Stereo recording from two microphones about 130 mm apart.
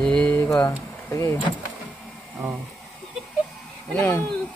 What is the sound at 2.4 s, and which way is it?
Speech, 20° right (ahead or behind).